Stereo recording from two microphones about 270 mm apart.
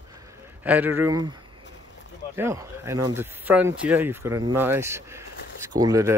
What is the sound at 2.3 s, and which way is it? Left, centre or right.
A man's voice, centre.